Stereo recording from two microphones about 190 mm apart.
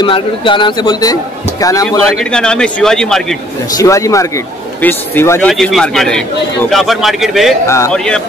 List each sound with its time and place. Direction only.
0.0 s speech: 25° left (ahead or behind)
2.1 s a man's voice: 5° left (ahead or behind)
3.7 s speech: 15° left (ahead or behind)
5.5 s a man's voice: centre (ahead or behind)
7.6 s speech: 15° left (ahead or behind)
7.9 s a man's voice: 5° left (ahead or behind)